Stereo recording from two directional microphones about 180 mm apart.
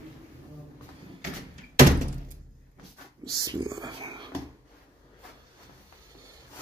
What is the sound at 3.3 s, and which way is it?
Whispering, 20° right (ahead or behind).